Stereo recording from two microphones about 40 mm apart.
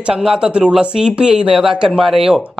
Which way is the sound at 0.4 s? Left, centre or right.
Right.